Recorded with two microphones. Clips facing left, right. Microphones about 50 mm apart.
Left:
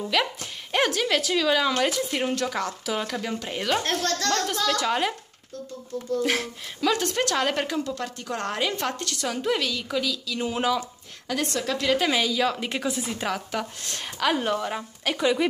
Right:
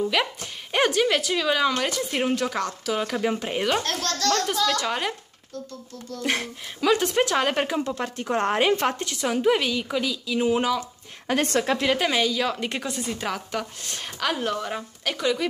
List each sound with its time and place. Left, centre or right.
0.1 s a woman's voice: centre
3.2 s a woman's voice: centre
3.8 s speech: left
4.7 s a woman's voice: centre
6.2 s a woman's voice: centre
11.2 s a woman's voice: right
11.9 s a woman's voice: centre